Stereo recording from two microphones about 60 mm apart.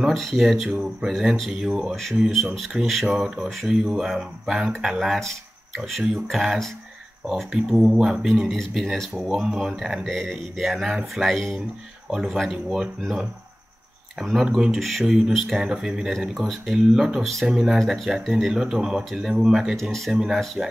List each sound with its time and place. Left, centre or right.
0.1 s speech: centre
3.2 s speech: centre
8.5 s speech: centre
10.0 s speech: centre
14.3 s speech: centre
15.6 s speech: centre
19.8 s speech: centre
20.1 s speech: centre